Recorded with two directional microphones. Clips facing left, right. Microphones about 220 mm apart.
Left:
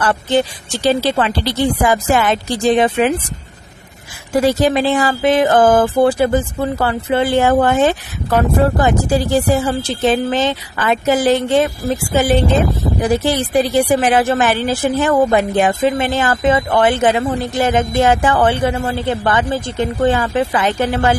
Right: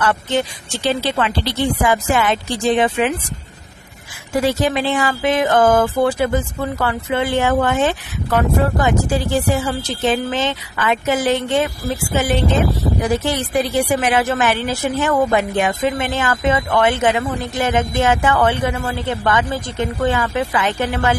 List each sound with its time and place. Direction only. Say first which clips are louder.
0.0 s speech: left 3 dB; 35° left (ahead or behind)
4.5 s speech: left 4 dB; 35° left (ahead or behind)
15.1 s speech: left 3 dB; 25° left (ahead or behind)